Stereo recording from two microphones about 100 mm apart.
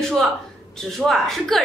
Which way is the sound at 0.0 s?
5° left (ahead or behind).